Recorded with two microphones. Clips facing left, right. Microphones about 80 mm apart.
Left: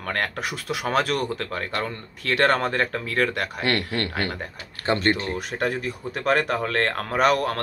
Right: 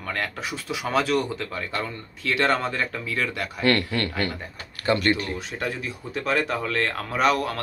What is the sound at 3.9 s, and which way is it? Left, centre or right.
Speech, left.